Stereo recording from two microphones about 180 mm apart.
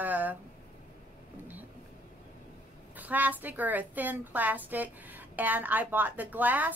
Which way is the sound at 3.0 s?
10° right (ahead or behind).